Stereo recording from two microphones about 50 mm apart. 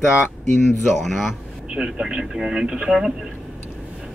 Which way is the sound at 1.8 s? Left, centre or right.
Centre.